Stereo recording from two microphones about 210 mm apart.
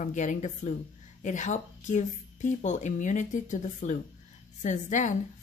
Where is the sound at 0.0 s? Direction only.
35° left (ahead or behind).